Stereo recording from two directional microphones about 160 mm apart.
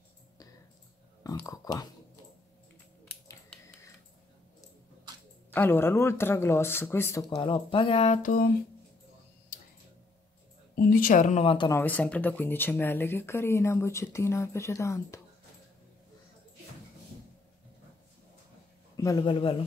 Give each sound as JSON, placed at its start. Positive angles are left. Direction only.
{"t": 1.2, "sound": "speech", "side_deg": 20}
{"t": 5.5, "sound": "speech", "side_deg": 15}
{"t": 7.2, "sound": "speech", "side_deg": 30}
{"t": 10.8, "sound": "a woman's voice", "side_deg": 60}
{"t": 11.4, "sound": "speech", "side_deg": 30}
{"t": 11.7, "sound": "speech", "side_deg": 10}
{"t": 19.0, "sound": "speech", "side_deg": 30}